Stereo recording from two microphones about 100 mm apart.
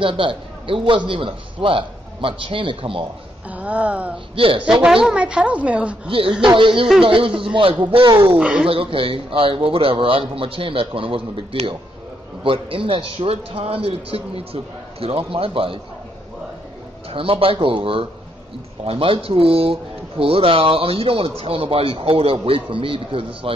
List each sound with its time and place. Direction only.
0.0 s a man's voice: 60° right (ahead or behind)
3.4 s a woman's voice: 15° right (ahead or behind)
4.4 s a man's voice: 60° right (ahead or behind)
4.8 s a woman's voice: 5° right (ahead or behind)
6.0 s a man's voice: 65° right (ahead or behind)
8.4 s a woman's voice: 5° right (ahead or behind)
8.6 s a man's voice: 65° right (ahead or behind)
17.1 s a man's voice: 65° right (ahead or behind)